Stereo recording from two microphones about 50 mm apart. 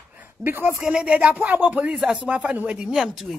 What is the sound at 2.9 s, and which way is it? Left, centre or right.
Speech, centre.